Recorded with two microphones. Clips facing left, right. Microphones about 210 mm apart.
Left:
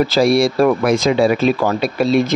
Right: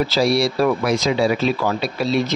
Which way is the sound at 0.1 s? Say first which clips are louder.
Left 4 dB; 50° left (ahead or behind).